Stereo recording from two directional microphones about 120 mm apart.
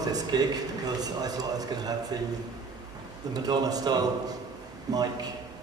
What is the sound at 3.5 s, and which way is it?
A man's voice, 35° right (ahead or behind).